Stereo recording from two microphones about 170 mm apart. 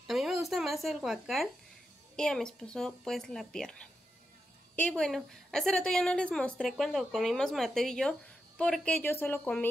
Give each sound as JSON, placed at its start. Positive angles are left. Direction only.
{"t": 0.0, "sound": "a woman's voice", "side_deg": 0}